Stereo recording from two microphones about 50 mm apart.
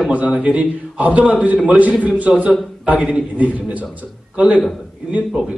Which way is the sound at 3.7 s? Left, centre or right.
Right.